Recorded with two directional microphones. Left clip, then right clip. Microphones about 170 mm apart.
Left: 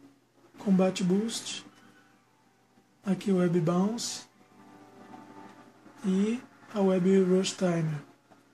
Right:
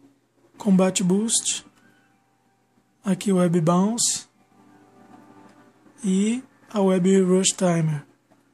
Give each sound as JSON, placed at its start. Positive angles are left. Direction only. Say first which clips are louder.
{"t": 0.6, "sound": "speech", "louder": "right 6 dB", "side_deg": -50}
{"t": 3.0, "sound": "speech", "louder": "right 6 dB", "side_deg": -50}
{"t": 6.0, "sound": "speech", "louder": "right 5 dB", "side_deg": -50}